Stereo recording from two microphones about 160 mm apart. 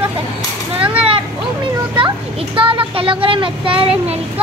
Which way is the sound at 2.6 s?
35° right (ahead or behind).